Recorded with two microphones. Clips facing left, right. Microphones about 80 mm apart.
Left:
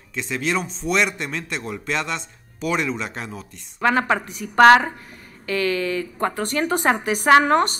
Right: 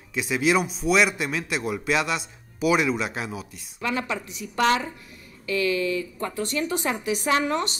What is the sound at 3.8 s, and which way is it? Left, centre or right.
A woman's voice, left.